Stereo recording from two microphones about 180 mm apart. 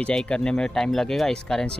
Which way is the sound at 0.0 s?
5° left (ahead or behind).